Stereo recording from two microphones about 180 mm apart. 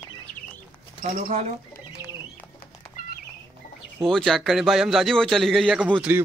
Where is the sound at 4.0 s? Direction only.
Centre (ahead or behind).